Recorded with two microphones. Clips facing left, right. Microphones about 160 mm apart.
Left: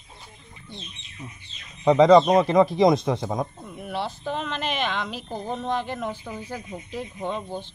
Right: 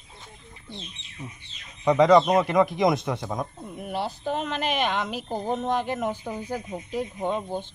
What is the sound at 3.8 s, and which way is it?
Speech, 45° right (ahead or behind).